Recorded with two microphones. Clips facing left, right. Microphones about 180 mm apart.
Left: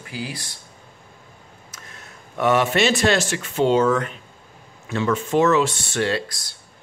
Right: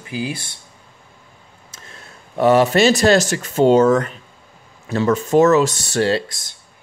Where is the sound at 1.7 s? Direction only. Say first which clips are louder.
Right 2 dB; 30° right (ahead or behind).